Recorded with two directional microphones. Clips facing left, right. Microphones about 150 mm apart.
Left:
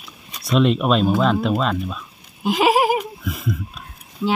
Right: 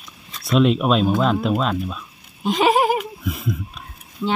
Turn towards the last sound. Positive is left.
turn(degrees=0)  # may be behind; listen again after turning